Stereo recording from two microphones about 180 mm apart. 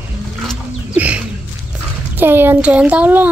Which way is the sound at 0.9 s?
10° right (ahead or behind).